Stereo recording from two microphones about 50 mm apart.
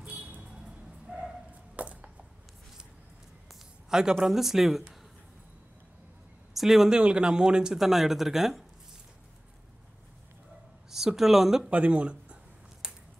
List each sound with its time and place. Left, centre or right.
0.0 s a sound: right
0.5 s bow-wow: centre
1.8 s a sound: right
3.9 s speech: centre
6.5 s speech: centre
6.9 s speech: right
7.8 s speech: centre
10.9 s speech: centre
11.7 s speech: right